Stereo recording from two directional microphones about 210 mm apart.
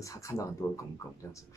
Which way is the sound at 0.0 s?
15° left (ahead or behind).